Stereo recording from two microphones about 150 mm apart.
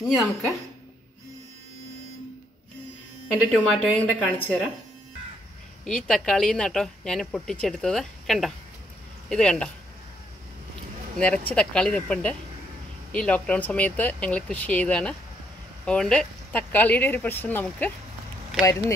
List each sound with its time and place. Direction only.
0.0 s a woman's voice: centre (ahead or behind)
3.7 s a woman's voice: 5° left (ahead or behind)
5.9 s a woman's voice: 5° left (ahead or behind)
11.1 s a woman's voice: 10° left (ahead or behind)